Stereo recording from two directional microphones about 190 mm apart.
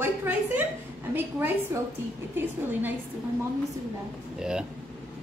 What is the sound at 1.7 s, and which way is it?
A woman's voice, 15° right (ahead or behind).